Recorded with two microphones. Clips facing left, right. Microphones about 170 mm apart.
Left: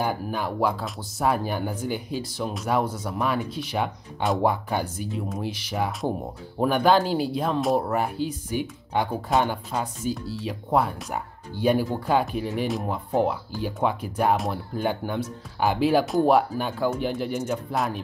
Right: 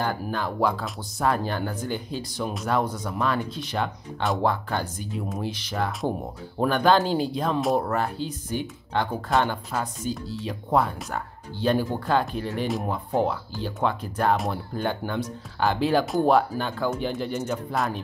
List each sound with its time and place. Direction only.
0.0 s speech: 10° left (ahead or behind)